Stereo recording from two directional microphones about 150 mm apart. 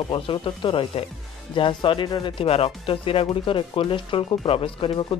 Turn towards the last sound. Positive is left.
turn(degrees=35)  # may be behind; listen again after turning